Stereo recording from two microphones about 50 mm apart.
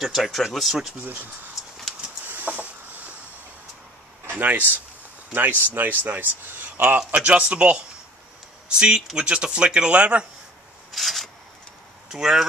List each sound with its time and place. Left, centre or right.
0.0 s speech: centre
1.0 s speech: right
2.2 s a sound: right
4.3 s speech: right
7.1 s speech: right
10.9 s a sound: centre
12.1 s speech: centre